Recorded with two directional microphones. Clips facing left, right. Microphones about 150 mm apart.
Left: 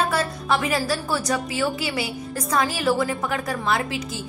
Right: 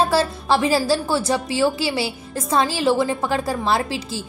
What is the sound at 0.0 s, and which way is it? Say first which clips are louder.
A woman's voice: right 5 dB; 30° right (ahead or behind).